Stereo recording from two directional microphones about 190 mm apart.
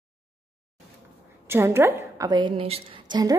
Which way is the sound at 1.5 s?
15° right (ahead or behind).